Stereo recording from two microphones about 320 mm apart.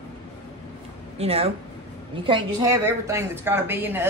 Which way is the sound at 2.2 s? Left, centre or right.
Centre.